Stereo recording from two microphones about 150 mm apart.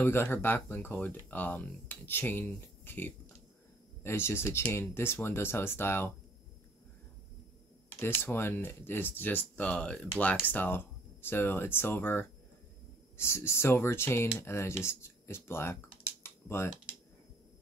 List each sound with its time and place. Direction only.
0.0 s speech: 15° left (ahead or behind)
8.0 s speech: 15° left (ahead or behind)
14.8 s typing: 15° left (ahead or behind)